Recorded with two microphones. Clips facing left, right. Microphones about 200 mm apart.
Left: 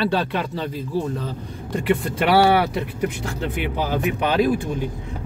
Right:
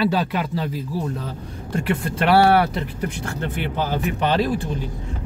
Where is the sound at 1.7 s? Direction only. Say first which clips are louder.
Left 2 dB; centre (ahead or behind).